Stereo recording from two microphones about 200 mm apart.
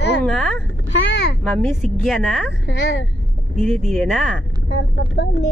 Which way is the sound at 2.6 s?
65° left (ahead or behind).